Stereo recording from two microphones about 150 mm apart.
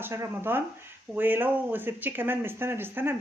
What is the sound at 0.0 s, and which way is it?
Speech, 15° right (ahead or behind).